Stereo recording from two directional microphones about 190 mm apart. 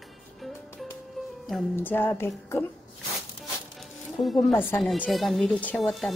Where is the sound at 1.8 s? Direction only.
10° left (ahead or behind).